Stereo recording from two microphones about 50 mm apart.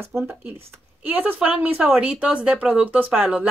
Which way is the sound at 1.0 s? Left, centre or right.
Right.